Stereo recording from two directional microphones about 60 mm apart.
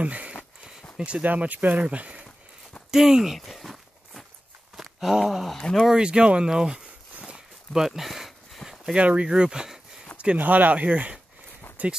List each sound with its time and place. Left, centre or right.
0.0 s a sound: right
0.9 s speech: centre
1.2 s speech: right
2.9 s speech: centre
3.3 s walk: centre
4.7 s a sound: centre
5.6 s speech: centre
5.9 s speech: centre
7.2 s a sound: centre
8.9 s speech: centre
10.1 s speech: right